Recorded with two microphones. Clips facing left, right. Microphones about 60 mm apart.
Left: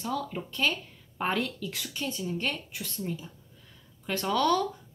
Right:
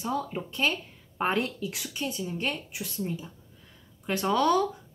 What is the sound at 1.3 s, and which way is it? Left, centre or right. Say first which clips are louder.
Speech: even; right.